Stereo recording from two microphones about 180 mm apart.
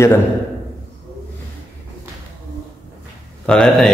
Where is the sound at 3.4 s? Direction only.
5° left (ahead or behind).